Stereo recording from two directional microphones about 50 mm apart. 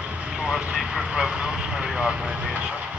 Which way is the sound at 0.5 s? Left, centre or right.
Centre.